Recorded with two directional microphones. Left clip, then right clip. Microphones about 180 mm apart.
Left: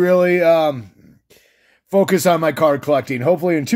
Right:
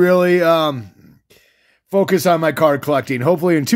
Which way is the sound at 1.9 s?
10° right (ahead or behind).